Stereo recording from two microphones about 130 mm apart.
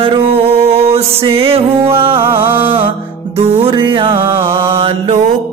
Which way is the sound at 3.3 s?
50° right (ahead or behind).